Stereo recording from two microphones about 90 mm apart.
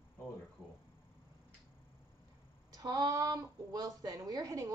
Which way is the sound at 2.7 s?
45° right (ahead or behind).